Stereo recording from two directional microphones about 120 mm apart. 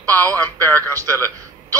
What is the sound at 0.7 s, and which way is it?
Music, 30° right (ahead or behind).